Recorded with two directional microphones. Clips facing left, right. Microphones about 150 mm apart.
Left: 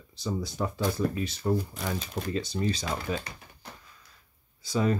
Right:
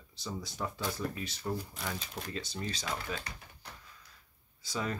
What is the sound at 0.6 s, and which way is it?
Speech, 45° left (ahead or behind).